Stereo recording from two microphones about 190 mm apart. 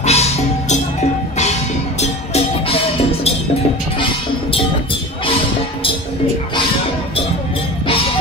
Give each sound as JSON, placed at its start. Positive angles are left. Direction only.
{"t": 0.0, "sound": "music", "side_deg": 35}
{"t": 2.0, "sound": "music", "side_deg": 35}